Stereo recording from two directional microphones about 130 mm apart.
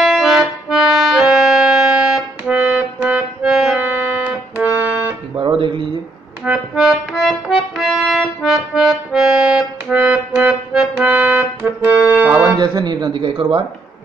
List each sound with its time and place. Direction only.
0.0 s accordion: centre (ahead or behind)
5.3 s music: 35° right (ahead or behind)
6.4 s accordion: 5° right (ahead or behind)
11.6 s music: 10° right (ahead or behind)
12.5 s a sound: 35° right (ahead or behind)